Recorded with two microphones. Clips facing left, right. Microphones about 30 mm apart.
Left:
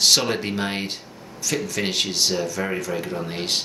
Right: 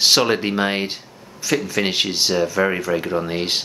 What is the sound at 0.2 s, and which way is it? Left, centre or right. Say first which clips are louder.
Speech: right 6 dB; centre.